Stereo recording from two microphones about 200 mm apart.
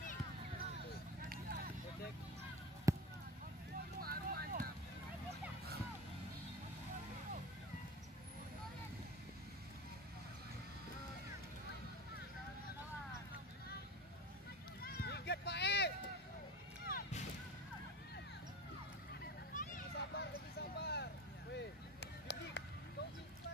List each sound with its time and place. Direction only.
1.3 s vehicle: 50° right (ahead or behind)
2.9 s basketball bounce: 15° right (ahead or behind)
4.0 s vehicle: 50° right (ahead or behind)
14.8 s run: 50° left (ahead or behind)
16.8 s a sound: 40° left (ahead or behind)
19.5 s a sound: 40° left (ahead or behind)
21.5 s chop: 60° left (ahead or behind)